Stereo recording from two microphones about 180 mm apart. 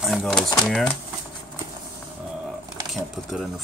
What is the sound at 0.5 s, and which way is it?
Speech, 5° left (ahead or behind).